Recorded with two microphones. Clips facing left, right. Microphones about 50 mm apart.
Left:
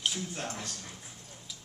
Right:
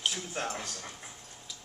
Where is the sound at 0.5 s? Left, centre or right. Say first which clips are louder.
Right 2 dB; right.